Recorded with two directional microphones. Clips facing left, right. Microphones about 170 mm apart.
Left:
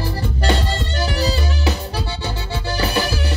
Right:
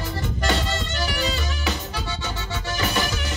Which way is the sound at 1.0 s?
35° left (ahead or behind).